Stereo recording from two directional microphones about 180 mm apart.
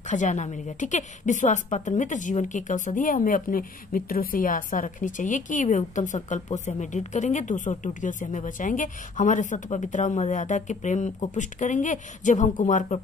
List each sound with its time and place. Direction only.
0.1 s a woman's voice: 40° left (ahead or behind)